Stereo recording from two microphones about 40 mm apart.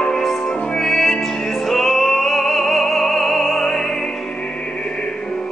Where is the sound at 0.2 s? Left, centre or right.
Centre.